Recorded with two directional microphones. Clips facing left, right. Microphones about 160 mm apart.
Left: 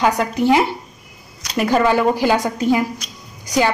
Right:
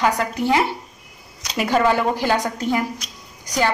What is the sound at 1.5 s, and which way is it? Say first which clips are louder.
A woman's voice: left 2 dB; centre (ahead or behind).